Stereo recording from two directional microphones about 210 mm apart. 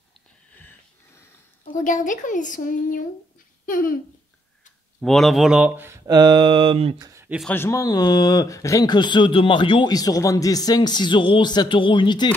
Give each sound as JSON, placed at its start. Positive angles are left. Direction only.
{"t": 0.6, "sound": "wheeze", "side_deg": 10}
{"t": 1.6, "sound": "speech", "side_deg": 35}
{"t": 5.0, "sound": "speech", "side_deg": 0}
{"t": 7.1, "sound": "a sound", "side_deg": -15}
{"t": 7.3, "sound": "speech", "side_deg": 5}